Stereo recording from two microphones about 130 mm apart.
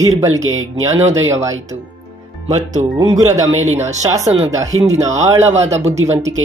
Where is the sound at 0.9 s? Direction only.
20° right (ahead or behind).